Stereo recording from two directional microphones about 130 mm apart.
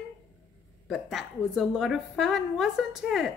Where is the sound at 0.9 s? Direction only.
Centre (ahead or behind).